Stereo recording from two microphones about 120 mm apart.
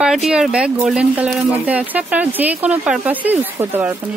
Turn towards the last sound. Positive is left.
turn(degrees=-15)  # may be behind; listen again after turning